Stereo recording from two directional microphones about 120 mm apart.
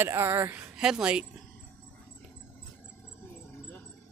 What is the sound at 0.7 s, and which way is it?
Speech, 5° right (ahead or behind).